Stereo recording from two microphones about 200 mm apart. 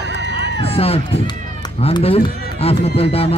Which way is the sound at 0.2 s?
60° right (ahead or behind).